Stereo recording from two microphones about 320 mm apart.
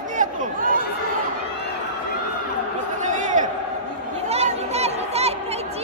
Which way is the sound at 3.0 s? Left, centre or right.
Right.